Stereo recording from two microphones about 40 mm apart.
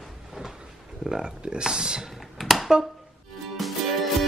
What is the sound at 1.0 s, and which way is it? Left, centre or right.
Speech, centre.